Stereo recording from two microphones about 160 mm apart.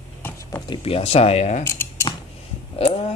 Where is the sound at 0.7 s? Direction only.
35° left (ahead or behind).